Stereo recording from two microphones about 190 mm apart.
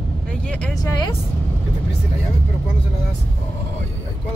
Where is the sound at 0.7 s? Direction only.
20° left (ahead or behind).